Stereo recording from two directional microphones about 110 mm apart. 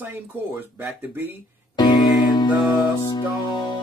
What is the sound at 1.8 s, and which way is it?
Music, 40° left (ahead or behind).